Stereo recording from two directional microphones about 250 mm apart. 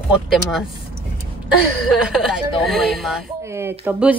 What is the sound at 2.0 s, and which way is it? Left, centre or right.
Speech, centre.